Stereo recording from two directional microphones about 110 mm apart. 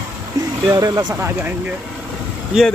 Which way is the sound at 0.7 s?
35° right (ahead or behind).